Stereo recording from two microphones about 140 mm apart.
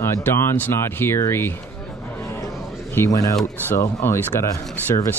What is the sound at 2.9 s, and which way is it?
Speech, 20° left (ahead or behind).